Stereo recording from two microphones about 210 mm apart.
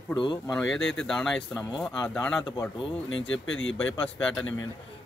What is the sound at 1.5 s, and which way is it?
Speech, 15° left (ahead or behind).